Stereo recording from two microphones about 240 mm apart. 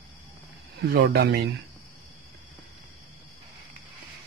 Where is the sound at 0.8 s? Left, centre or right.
Right.